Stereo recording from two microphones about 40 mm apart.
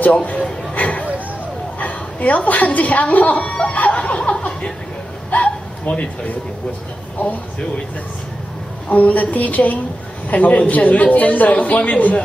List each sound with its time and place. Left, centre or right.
0.0 s a man's voice: left
0.7 s a sound: left
1.8 s a woman's voice: left
4.0 s laughter: left
5.3 s speech: left
8.8 s a woman's voice: left